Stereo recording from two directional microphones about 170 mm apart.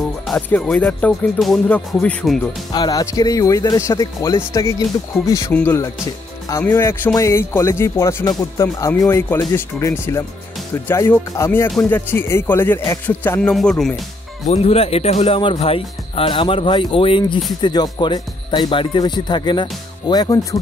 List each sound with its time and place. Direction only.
0.3 s speech: 5° left (ahead or behind)
2.7 s speech: 25° left (ahead or behind)
11.7 s speech: centre (ahead or behind)
12.1 s speech: 15° left (ahead or behind)
14.5 s speech: 35° left (ahead or behind)